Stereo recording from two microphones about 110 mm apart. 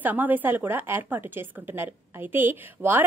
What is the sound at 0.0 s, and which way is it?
A woman's voice, 15° right (ahead or behind).